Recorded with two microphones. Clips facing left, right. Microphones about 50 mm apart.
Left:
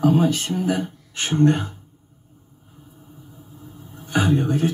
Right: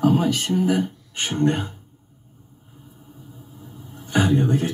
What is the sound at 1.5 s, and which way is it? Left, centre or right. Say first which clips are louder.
Speech: left 2 dB; right.